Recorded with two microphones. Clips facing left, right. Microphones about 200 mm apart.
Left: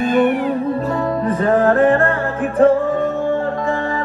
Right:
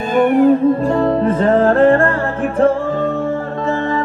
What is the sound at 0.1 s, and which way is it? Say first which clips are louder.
Music: right 6 dB; 45° right (ahead or behind).